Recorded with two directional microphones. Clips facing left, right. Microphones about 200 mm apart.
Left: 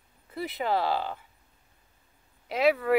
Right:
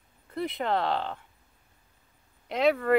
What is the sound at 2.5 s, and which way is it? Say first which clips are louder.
Speech: even; 5° left (ahead or behind).